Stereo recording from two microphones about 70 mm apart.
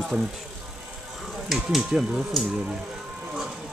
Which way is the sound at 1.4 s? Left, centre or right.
Centre.